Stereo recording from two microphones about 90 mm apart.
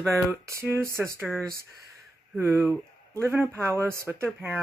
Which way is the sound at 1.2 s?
10° left (ahead or behind).